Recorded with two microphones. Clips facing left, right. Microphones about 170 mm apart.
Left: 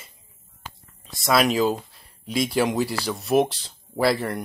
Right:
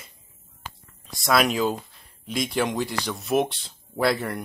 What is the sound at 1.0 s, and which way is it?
Speech, centre (ahead or behind).